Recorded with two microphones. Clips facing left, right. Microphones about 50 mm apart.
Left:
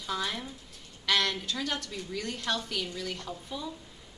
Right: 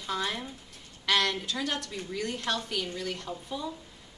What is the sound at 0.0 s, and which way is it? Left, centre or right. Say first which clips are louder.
Speech: right 1 dB; centre.